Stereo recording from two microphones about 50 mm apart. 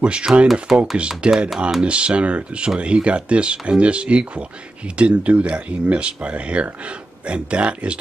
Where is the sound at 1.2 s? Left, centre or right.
Right.